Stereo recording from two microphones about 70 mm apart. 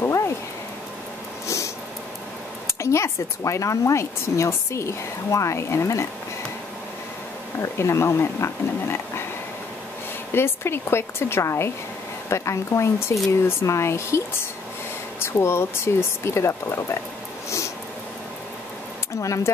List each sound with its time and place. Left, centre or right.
0.0 s a sound: left
2.8 s a woman's voice: left
7.6 s speech: left
10.3 s a woman's voice: left
19.2 s a woman's voice: left